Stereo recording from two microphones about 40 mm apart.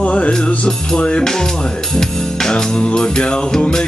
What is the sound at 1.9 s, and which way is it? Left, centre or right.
Music, centre.